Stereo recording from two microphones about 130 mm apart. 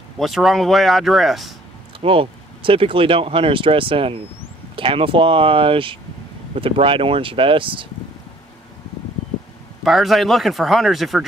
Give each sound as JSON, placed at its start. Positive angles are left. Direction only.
{"t": 0.2, "sound": "speech", "side_deg": 0}
{"t": 2.0, "sound": "speech", "side_deg": -45}
{"t": 9.8, "sound": "speech", "side_deg": 0}